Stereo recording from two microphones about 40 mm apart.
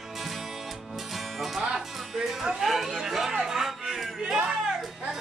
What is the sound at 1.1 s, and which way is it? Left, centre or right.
Music, centre.